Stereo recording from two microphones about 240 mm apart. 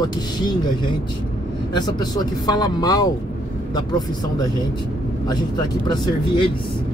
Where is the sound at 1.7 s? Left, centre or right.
Centre.